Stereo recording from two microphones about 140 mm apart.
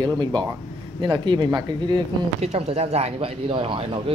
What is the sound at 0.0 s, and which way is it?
A man's voice, 30° right (ahead or behind).